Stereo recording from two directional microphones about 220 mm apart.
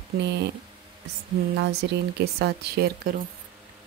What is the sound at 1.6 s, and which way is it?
Speech, 50° right (ahead or behind).